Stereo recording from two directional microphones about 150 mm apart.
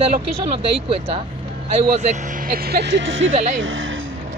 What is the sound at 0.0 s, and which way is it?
Speech, 40° right (ahead or behind).